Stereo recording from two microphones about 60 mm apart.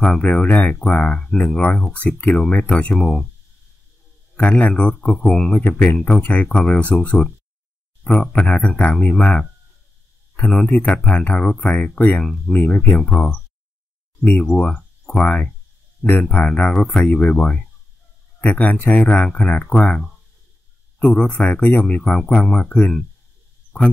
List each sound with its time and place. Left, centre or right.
0.0 s speech: left
4.4 s speech: left
10.7 s speech: left
12.3 s speech: centre
12.5 s speech: left
21.0 s speech: centre